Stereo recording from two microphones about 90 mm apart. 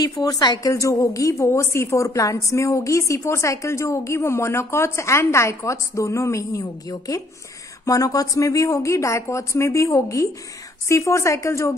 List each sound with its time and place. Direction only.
0.0 s a woman's voice: 40° left (ahead or behind)